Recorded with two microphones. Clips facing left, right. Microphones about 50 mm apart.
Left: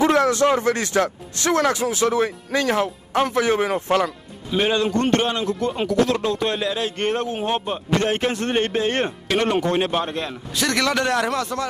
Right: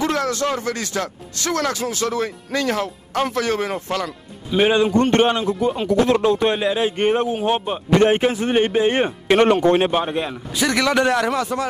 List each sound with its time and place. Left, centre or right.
0.0 s a man's voice: left
4.6 s a man's voice: centre
5.1 s speech: right
5.5 s a man's voice: centre
5.9 s speech: right
8.2 s a man's voice: centre
9.3 s speech: right
9.8 s a man's voice: centre